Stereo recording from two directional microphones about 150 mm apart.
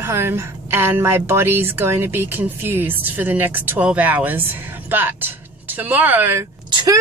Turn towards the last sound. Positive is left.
turn(degrees=-30)  # may be behind; listen again after turning